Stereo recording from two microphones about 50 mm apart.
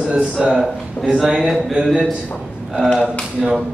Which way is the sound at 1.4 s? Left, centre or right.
Centre.